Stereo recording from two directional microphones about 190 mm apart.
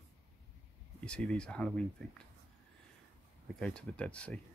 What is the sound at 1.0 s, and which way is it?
Speech, 5° left (ahead or behind).